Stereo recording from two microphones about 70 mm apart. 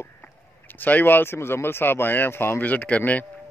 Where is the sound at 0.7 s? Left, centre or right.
Left.